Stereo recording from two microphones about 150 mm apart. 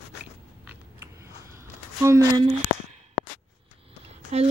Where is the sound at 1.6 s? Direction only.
20° right (ahead or behind).